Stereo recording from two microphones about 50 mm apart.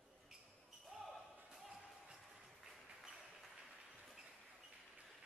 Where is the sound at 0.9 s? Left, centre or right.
Centre.